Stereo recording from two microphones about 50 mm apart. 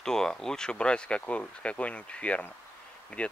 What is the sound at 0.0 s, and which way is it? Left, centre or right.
Speech, centre.